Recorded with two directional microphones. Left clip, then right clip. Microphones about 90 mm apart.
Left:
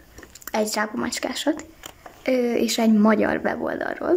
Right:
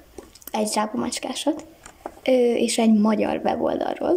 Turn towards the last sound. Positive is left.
turn(degrees=-20)  # may be behind; listen again after turning